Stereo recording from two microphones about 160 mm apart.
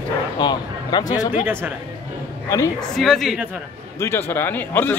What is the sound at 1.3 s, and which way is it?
Speech, 10° right (ahead or behind).